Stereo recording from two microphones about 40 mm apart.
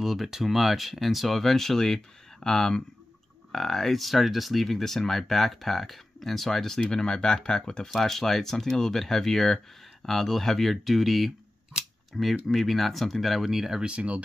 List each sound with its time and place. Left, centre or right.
0.0 s speech: centre
7.9 s speech: centre
13.8 s speech: right